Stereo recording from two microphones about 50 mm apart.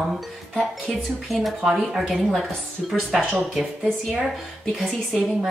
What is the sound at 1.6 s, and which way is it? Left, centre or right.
Speech, centre.